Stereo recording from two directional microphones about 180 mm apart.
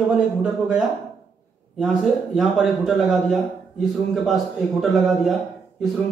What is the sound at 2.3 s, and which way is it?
A man's voice, centre (ahead or behind).